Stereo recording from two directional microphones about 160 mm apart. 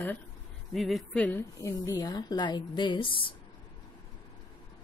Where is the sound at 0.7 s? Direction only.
Centre (ahead or behind).